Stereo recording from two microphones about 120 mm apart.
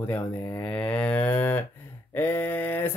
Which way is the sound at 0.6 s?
10° left (ahead or behind).